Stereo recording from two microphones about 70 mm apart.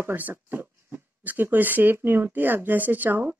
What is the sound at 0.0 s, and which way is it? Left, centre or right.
Speech, right.